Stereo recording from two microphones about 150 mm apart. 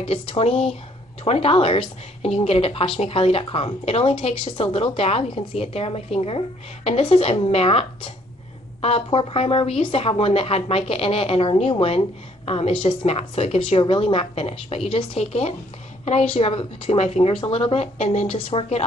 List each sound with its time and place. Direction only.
0.0 s a woman's voice: 40° left (ahead or behind)